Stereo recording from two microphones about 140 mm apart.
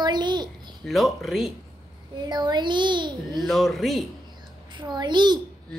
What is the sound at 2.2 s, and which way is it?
A child's voice, 30° right (ahead or behind).